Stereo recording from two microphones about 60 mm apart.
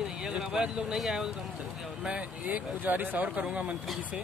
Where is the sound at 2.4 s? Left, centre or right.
Right.